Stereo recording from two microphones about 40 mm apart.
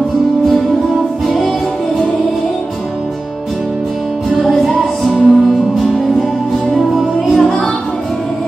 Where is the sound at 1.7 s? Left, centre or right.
Centre.